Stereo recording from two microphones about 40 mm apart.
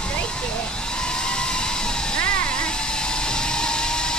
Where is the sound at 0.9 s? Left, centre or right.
Centre.